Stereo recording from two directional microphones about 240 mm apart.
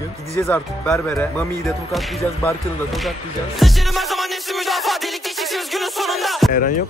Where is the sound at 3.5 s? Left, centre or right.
Centre.